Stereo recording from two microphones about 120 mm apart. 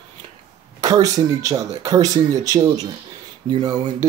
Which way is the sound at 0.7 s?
30° right (ahead or behind).